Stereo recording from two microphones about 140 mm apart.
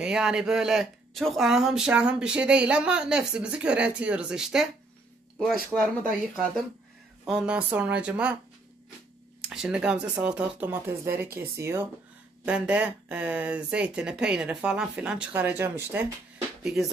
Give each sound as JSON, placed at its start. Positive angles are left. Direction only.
{"t": 0.0, "sound": "speech", "side_deg": -5}
{"t": 9.4, "sound": "speech", "side_deg": -5}
{"t": 12.4, "sound": "speech", "side_deg": -10}
{"t": 16.6, "sound": "speech", "side_deg": 0}